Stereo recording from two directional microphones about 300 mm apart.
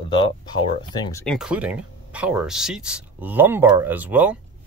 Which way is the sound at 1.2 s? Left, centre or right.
Centre.